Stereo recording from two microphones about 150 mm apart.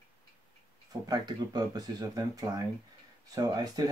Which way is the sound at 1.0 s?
25° right (ahead or behind).